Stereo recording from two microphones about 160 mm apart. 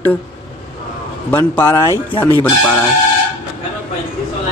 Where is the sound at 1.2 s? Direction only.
15° left (ahead or behind).